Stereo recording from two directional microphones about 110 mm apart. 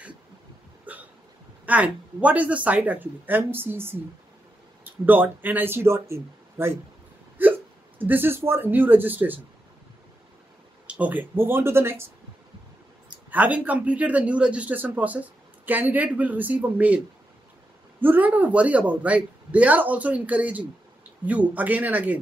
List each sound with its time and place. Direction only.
0.9 s hiccup: 15° right (ahead or behind)
1.7 s a man's voice: 15° right (ahead or behind)
5.0 s speech: 15° right (ahead or behind)
10.9 s speech: 15° right (ahead or behind)
13.3 s a man's voice: 15° right (ahead or behind)
18.0 s a man's voice: 15° right (ahead or behind)